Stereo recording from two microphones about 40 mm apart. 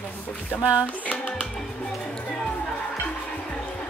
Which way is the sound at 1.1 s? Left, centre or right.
Left.